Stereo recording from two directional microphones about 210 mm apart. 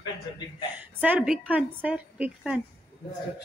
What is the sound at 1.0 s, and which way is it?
A woman's voice, 5° right (ahead or behind).